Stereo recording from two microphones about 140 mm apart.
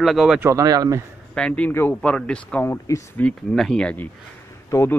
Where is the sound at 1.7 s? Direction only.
15° left (ahead or behind).